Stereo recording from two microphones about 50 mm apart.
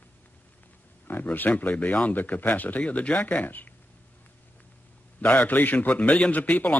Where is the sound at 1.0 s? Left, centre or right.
Left.